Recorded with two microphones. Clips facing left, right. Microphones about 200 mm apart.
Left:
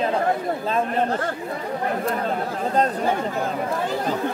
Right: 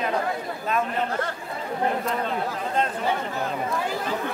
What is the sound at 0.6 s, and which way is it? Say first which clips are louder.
Speech: left 2 dB; 30° left (ahead or behind).